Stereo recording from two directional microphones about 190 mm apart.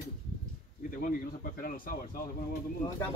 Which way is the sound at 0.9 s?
45° left (ahead or behind).